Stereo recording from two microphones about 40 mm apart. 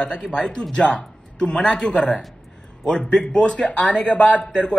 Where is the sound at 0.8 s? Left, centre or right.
Left.